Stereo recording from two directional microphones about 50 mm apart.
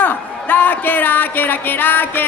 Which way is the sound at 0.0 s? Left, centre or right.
Left.